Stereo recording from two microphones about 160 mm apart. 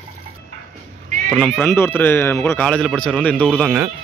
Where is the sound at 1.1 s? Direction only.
50° right (ahead or behind).